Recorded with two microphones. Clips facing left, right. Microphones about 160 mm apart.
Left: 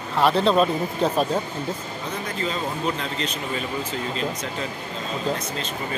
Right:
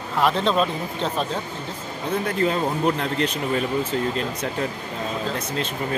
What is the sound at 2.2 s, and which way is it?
Speech, 60° right (ahead or behind).